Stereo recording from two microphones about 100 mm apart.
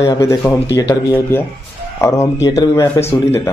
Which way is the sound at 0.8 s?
30° left (ahead or behind).